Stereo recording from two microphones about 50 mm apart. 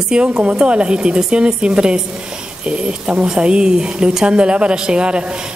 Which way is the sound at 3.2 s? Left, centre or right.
Centre.